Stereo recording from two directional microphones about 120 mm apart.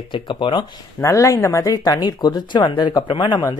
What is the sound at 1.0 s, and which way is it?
Speech, 25° left (ahead or behind).